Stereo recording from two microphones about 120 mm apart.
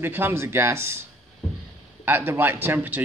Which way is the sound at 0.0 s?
20° right (ahead or behind).